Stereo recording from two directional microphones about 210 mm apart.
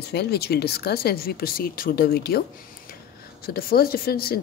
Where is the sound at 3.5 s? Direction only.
45° left (ahead or behind).